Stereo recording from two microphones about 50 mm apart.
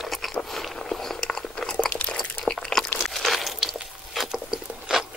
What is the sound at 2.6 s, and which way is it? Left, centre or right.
Crunch, centre.